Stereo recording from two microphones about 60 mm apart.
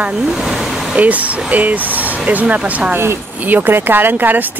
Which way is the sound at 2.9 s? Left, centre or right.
Right.